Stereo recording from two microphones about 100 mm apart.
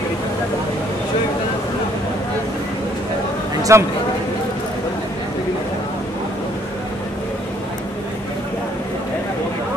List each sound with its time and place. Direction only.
3.7 s speech: 30° right (ahead or behind)